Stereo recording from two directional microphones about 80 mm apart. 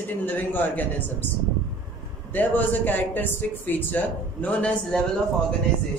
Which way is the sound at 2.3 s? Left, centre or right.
Left.